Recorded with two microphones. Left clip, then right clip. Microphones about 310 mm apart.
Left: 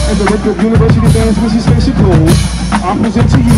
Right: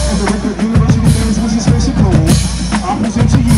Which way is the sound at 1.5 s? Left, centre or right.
Centre.